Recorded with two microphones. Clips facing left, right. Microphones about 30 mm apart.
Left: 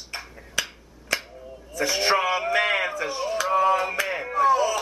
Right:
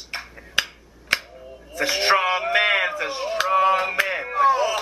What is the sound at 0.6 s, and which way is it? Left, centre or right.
Tick-tock, right.